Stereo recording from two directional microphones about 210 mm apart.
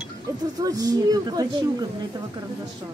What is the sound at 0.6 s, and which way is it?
Speech, 15° right (ahead or behind).